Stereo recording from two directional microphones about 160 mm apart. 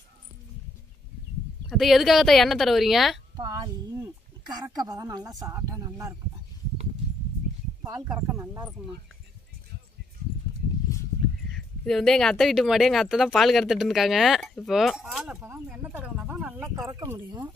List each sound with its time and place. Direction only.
1.7 s speech: centre (ahead or behind)
3.3 s a sound: 20° right (ahead or behind)
4.7 s speech: 25° right (ahead or behind)
8.3 s speech: 15° right (ahead or behind)
11.5 s speech: 5° left (ahead or behind)
15.5 s a sound: 10° right (ahead or behind)
16.7 s speech: 20° right (ahead or behind)